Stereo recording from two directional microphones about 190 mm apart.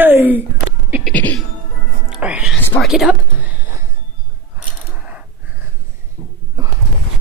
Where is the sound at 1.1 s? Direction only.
10° left (ahead or behind).